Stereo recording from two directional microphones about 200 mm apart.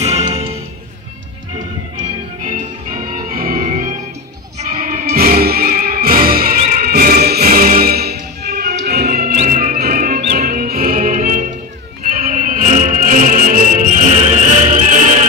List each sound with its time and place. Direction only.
0.0 s music: 30° right (ahead or behind)
2.4 s music: 40° right (ahead or behind)